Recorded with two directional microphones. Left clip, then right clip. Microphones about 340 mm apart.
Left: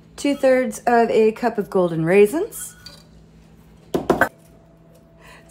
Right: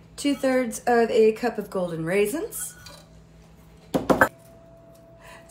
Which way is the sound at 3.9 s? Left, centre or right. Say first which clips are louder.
Left 1 dB; centre.